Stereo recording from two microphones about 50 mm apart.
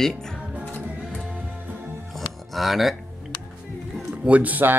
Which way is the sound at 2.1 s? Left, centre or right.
Centre.